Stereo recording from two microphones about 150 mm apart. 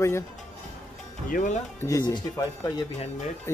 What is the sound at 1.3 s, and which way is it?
Speech, 60° left (ahead or behind).